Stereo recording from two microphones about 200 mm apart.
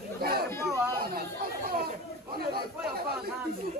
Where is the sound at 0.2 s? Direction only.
50° right (ahead or behind).